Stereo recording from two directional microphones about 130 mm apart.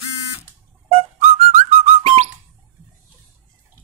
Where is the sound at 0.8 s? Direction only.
50° right (ahead or behind).